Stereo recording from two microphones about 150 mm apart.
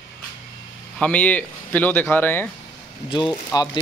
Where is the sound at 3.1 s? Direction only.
35° left (ahead or behind).